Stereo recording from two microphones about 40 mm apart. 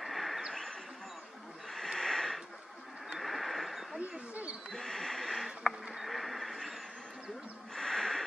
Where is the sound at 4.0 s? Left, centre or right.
Right.